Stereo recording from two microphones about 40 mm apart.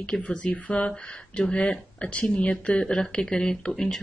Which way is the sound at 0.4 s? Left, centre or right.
Left.